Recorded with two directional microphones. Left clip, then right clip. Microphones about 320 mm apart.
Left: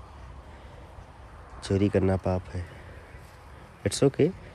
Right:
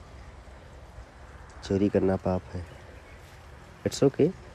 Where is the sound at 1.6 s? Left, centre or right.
Left.